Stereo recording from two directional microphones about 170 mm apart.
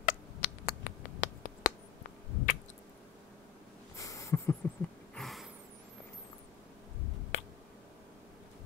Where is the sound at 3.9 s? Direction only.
20° left (ahead or behind).